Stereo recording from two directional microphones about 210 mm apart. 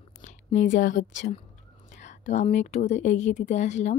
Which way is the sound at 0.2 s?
35° left (ahead or behind).